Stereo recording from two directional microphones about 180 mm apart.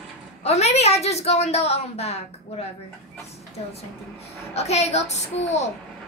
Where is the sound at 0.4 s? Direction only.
35° left (ahead or behind).